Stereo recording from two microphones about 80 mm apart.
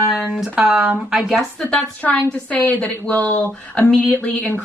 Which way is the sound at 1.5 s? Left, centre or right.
Centre.